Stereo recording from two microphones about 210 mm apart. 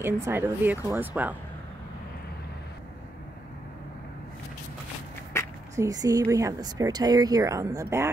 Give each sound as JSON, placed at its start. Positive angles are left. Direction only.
{"t": 0.0, "sound": "speech", "side_deg": -10}
{"t": 5.4, "sound": "a sound", "side_deg": 15}
{"t": 5.8, "sound": "speech", "side_deg": -15}